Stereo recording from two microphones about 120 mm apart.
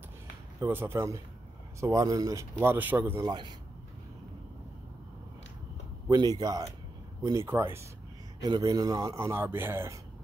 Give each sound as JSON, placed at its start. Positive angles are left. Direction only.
{"t": 0.6, "sound": "a man's voice", "side_deg": -20}
{"t": 3.2, "sound": "speech", "side_deg": -35}
{"t": 6.0, "sound": "a man's voice", "side_deg": -35}
{"t": 8.4, "sound": "a man's voice", "side_deg": -35}